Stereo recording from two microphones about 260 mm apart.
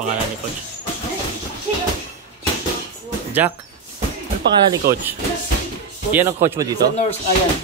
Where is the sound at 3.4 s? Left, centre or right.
Centre.